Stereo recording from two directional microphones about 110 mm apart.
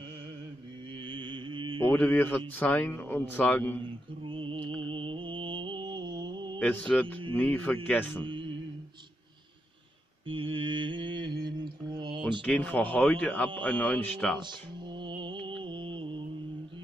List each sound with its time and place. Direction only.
1.0 s music: 45° right (ahead or behind)
1.8 s a man's voice: 15° left (ahead or behind)
4.2 s music: 50° right (ahead or behind)
6.7 s a man's voice: 15° left (ahead or behind)
8.3 s music: 45° right (ahead or behind)
10.2 s mantra: 50° right (ahead or behind)
12.4 s a man's voice: 10° left (ahead or behind)
14.4 s music: 45° right (ahead or behind)
15.6 s mantra: 50° right (ahead or behind)